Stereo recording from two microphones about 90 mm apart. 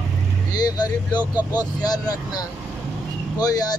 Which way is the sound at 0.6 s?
45° left (ahead or behind).